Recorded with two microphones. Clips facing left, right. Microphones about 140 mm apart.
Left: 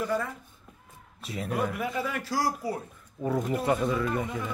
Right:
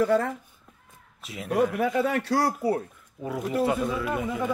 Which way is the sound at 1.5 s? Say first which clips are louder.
Right 7 dB; 80° right.